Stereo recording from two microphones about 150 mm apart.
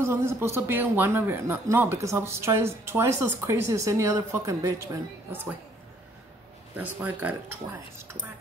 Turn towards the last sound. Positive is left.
turn(degrees=-10)  # may be behind; listen again after turning